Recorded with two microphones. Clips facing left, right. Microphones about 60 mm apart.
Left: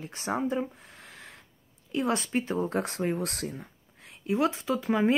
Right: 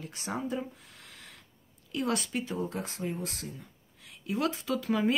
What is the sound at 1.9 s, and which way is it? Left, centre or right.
Speech, left.